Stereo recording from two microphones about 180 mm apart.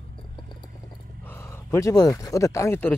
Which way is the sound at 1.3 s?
15° left (ahead or behind).